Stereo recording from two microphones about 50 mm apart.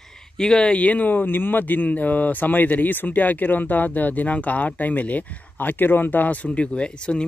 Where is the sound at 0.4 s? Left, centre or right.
Centre.